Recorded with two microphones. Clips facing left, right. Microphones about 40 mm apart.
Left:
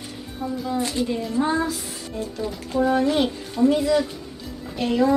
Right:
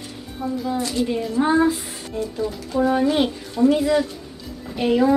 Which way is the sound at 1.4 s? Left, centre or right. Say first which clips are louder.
Right 6 dB; centre.